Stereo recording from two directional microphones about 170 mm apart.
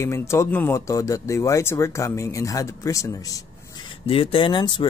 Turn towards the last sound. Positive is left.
turn(degrees=30)  # may be behind; listen again after turning